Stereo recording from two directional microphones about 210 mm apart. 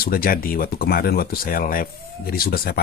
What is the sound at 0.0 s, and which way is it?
Speech, 45° left (ahead or behind).